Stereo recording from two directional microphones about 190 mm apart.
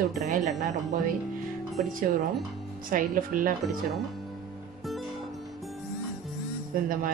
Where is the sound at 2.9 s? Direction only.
45° right (ahead or behind).